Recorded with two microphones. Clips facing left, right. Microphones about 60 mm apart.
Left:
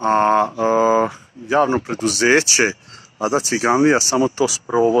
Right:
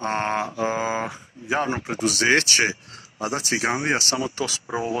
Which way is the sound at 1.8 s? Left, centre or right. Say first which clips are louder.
Left 3 dB; centre.